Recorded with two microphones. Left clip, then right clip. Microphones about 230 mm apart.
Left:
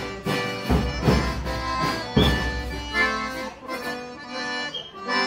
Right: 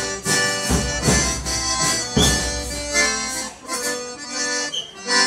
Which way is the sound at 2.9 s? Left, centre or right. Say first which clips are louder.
Right 3 dB; right.